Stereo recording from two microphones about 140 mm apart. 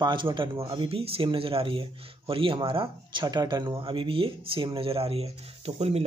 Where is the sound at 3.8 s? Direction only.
40° right (ahead or behind).